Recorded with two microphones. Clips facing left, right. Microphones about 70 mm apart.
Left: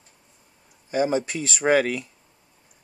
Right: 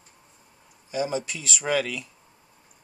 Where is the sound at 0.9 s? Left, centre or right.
Left.